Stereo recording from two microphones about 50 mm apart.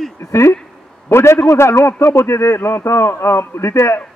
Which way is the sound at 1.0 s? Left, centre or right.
Left.